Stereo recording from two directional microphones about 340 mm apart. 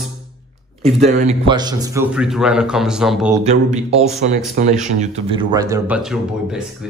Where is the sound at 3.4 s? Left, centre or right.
Centre.